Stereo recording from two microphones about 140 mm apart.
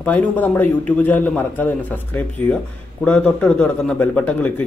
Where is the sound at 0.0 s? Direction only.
10° left (ahead or behind).